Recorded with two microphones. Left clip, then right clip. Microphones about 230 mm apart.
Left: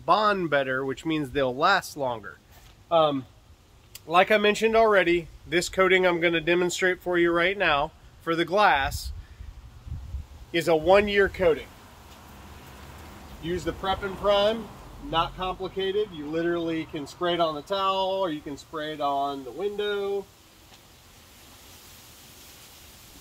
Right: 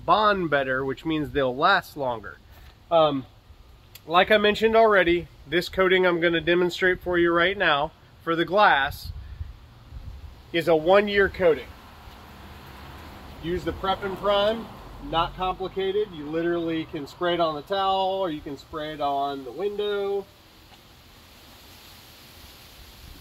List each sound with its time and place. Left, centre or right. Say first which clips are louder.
0.0 s speech: right 2 dB; centre
10.5 s speech: right 1 dB; centre
13.7 s speech: right 2 dB; left
15.0 s speech: right 2 dB; centre